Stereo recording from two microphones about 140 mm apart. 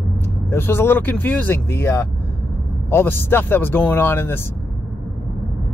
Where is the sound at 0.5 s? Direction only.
15° left (ahead or behind).